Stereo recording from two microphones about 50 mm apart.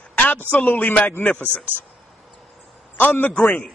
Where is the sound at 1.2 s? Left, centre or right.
Left.